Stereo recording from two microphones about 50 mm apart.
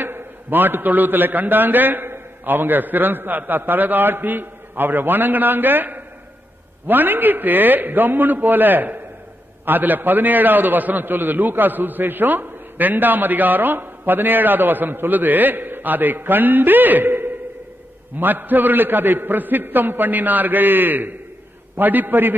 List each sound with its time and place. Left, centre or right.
0.0 s a man's voice: right